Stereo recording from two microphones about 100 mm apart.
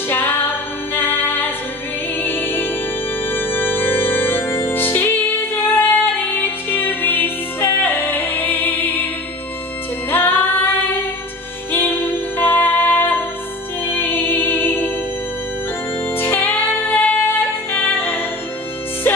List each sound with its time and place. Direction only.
0.1 s music: 20° left (ahead or behind)
10.1 s female singing: 20° left (ahead or behind)
11.7 s music: 20° left (ahead or behind)
16.1 s music: 20° left (ahead or behind)